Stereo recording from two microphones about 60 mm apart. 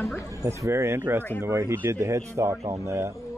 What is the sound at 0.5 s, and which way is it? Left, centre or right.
Speech, right.